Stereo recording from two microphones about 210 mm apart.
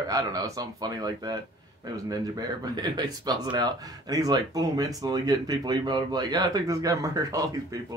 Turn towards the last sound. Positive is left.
turn(degrees=-15)  # may be behind; listen again after turning